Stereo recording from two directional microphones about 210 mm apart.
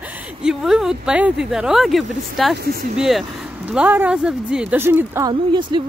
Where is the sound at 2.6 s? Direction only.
45° right (ahead or behind).